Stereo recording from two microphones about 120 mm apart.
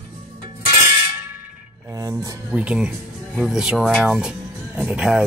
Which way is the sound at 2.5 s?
10° right (ahead or behind).